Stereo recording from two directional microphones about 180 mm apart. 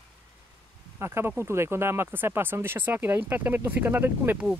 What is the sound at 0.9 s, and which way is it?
Speech, 15° right (ahead or behind).